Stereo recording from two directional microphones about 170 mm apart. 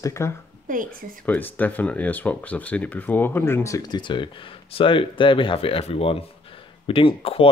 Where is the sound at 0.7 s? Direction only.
55° right (ahead or behind).